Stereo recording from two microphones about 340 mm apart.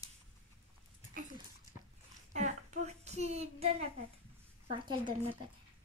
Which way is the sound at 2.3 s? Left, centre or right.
Right.